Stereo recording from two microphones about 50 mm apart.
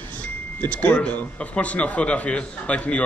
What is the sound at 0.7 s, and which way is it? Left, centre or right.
A man's voice, left.